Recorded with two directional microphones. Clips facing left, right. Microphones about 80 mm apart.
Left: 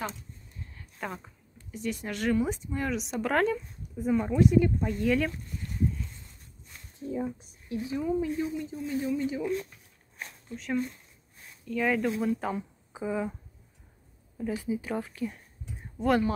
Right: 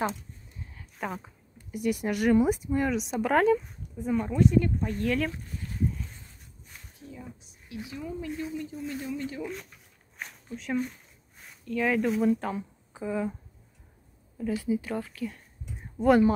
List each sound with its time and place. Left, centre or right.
0.7 s speech: centre
7.0 s speech: left
8.0 s speech: centre
10.5 s speech: centre
14.4 s speech: centre